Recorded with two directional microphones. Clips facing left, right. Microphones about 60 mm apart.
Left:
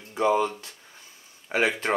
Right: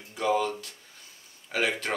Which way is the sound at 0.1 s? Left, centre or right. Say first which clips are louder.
Left 3 dB; left.